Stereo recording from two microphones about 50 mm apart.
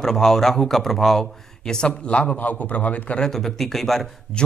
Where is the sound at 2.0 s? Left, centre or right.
Left.